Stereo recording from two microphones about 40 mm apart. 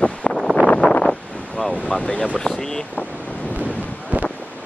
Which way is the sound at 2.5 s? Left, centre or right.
Centre.